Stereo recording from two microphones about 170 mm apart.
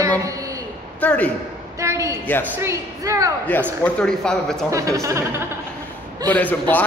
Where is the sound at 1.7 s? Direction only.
15° right (ahead or behind).